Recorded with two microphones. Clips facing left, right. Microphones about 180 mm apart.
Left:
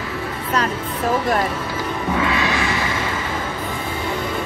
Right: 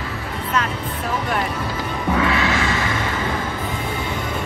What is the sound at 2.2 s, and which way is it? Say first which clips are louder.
Music: right 1 dB; 20° left (ahead or behind).